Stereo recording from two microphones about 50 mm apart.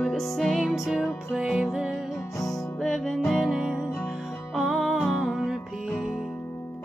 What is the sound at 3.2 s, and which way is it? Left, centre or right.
Music, centre.